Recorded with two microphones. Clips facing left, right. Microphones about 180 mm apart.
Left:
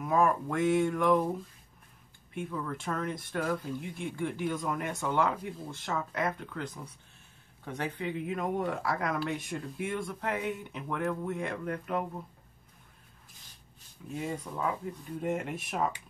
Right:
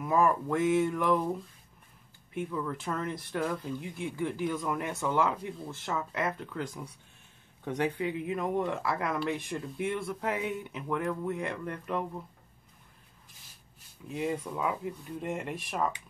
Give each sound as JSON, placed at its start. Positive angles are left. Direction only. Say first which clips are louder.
{"t": 0.0, "sound": "speech", "louder": "even", "side_deg": 0}
{"t": 2.3, "sound": "speech", "louder": "right 2 dB", "side_deg": 0}
{"t": 7.6, "sound": "speech", "louder": "right 5 dB", "side_deg": -15}
{"t": 8.0, "sound": "speech", "louder": "right 2 dB", "side_deg": 0}
{"t": 14.2, "sound": "speech", "louder": "right 3 dB", "side_deg": -5}